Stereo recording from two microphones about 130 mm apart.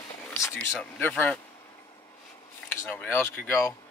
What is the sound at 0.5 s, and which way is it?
Speech, 5° left (ahead or behind).